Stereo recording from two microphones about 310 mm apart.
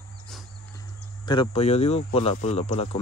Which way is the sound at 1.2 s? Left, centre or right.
Centre.